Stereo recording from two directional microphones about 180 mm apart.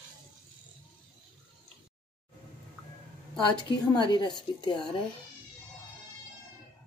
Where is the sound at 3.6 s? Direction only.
25° left (ahead or behind).